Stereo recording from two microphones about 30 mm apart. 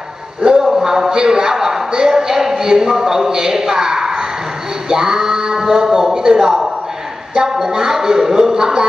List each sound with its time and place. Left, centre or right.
0.4 s a man's voice: right
7.5 s a man's voice: centre